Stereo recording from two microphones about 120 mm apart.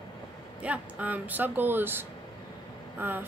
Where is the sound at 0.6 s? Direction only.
10° right (ahead or behind).